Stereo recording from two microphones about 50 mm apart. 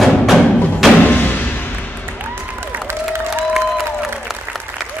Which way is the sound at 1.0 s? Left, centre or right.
Left.